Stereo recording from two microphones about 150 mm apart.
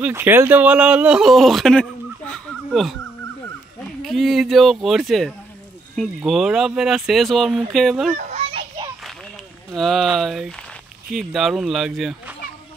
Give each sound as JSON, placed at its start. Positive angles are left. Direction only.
{"t": 0.0, "sound": "speech", "side_deg": -15}
{"t": 8.2, "sound": "children playing", "side_deg": -45}
{"t": 9.8, "sound": "speech", "side_deg": 0}